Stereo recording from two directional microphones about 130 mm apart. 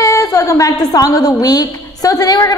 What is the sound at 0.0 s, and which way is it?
A woman's voice, 25° left (ahead or behind).